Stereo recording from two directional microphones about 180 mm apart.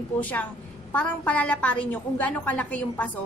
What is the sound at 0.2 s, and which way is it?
A woman's voice, 10° left (ahead or behind).